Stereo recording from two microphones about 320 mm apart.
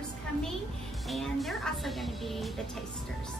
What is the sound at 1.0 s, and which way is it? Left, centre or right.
A woman's voice, centre.